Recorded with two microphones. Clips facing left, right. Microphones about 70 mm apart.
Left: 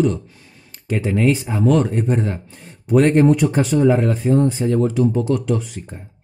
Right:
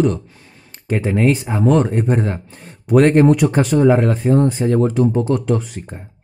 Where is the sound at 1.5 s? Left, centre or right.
Right.